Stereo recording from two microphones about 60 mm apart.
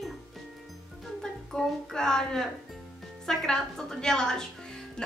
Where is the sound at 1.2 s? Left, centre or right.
Centre.